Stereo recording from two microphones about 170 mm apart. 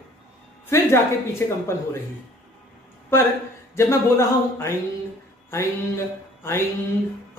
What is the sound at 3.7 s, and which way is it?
Speech, 15° left (ahead or behind).